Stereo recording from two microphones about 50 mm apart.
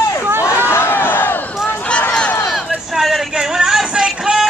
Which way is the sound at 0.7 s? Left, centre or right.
Left.